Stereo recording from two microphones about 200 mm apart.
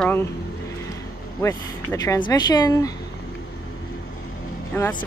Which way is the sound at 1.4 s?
15° left (ahead or behind).